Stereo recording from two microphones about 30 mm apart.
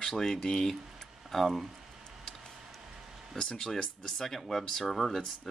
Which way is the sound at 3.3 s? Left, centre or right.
Left.